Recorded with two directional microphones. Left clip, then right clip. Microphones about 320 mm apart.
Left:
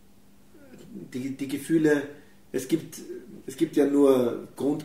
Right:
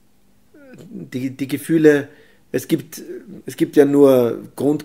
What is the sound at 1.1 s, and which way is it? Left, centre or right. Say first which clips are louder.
Speech: right 8 dB; right.